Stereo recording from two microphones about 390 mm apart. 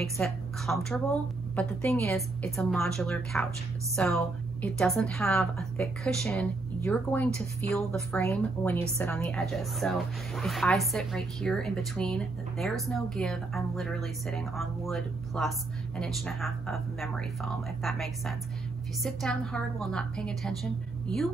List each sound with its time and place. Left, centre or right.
0.0 s a woman's voice: centre
7.2 s speech: centre
7.7 s a woman's voice: centre